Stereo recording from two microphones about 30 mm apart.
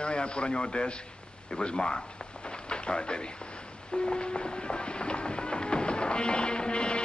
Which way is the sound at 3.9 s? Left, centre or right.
Left.